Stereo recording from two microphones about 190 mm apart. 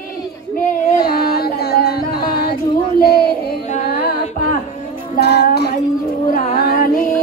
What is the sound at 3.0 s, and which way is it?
Child singing, 55° left (ahead or behind).